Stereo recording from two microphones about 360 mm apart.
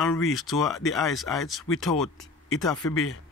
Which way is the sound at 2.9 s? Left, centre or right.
Left.